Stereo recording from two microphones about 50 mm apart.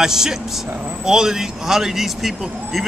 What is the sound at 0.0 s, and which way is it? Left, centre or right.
Speech, centre.